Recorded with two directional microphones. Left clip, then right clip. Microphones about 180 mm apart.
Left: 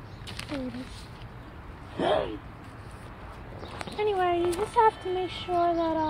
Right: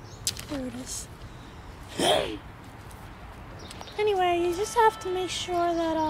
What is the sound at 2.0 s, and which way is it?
Speech, 25° right (ahead or behind).